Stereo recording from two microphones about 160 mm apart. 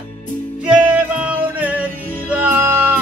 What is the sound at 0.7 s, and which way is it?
Music, 5° right (ahead or behind).